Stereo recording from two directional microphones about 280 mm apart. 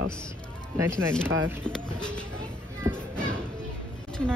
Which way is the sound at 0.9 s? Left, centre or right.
Centre.